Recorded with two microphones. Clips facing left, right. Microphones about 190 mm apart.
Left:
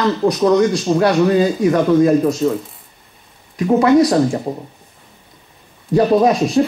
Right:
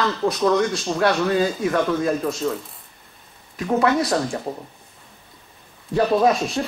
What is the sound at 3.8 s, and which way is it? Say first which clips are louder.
Speech: left 8 dB; 20° left (ahead or behind).